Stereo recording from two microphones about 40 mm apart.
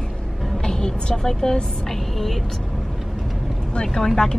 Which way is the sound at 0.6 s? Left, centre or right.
Centre.